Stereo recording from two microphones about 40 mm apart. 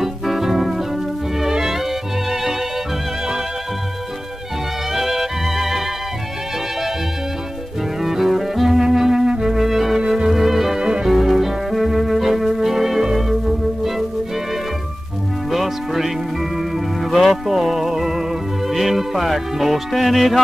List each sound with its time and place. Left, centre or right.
0.0 s music: centre
4.9 s music: centre
8.0 s music: centre
9.3 s clarinet: centre
9.9 s music: centre
10.8 s music: centre
11.1 s music: centre
15.5 s music: centre